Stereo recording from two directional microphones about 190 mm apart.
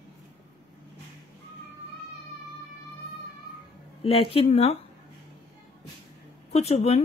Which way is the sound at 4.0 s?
30° left (ahead or behind).